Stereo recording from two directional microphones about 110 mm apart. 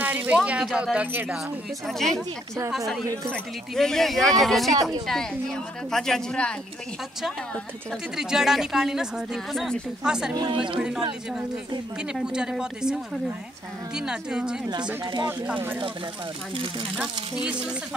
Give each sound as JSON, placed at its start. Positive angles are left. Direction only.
{"t": 0.0, "sound": "speech", "side_deg": -15}
{"t": 0.9, "sound": "speech", "side_deg": -15}
{"t": 1.9, "sound": "speech", "side_deg": 0}
{"t": 8.2, "sound": "speech", "side_deg": -5}
{"t": 10.3, "sound": "speech", "side_deg": -35}
{"t": 12.0, "sound": "speech", "side_deg": -5}
{"t": 16.9, "sound": "speech", "side_deg": -10}